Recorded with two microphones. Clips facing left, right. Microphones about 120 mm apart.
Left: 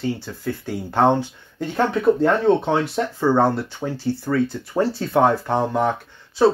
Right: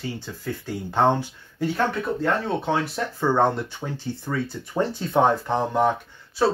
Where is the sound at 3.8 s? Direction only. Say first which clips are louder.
Left 8 dB; 20° left (ahead or behind).